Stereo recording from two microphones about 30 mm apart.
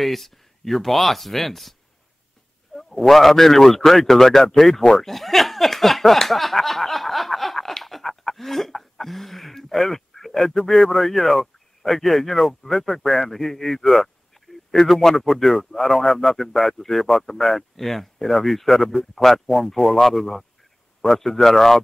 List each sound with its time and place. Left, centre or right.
0.0 s a man's voice: centre